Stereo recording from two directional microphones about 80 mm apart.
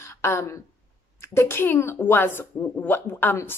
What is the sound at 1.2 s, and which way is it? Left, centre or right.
A woman's voice, left.